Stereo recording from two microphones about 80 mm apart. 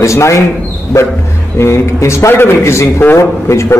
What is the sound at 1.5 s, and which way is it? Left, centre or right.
A man's voice, left.